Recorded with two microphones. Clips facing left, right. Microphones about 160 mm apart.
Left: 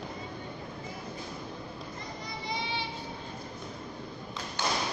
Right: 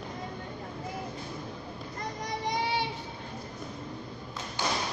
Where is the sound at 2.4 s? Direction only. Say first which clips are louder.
Right 5 dB; 80° right.